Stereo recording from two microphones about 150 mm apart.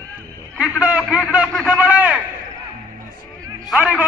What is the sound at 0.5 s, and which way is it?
A man's voice, 10° right (ahead or behind).